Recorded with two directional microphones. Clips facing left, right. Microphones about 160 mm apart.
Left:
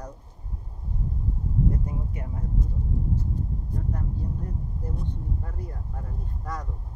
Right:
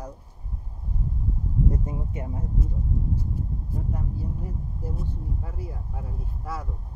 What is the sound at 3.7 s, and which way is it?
Speech, 5° right (ahead or behind).